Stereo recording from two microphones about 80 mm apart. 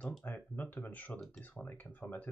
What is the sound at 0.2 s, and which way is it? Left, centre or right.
Speech, left.